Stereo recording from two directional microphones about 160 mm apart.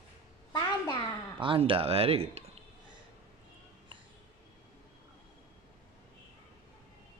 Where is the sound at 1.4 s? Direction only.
35° right (ahead or behind).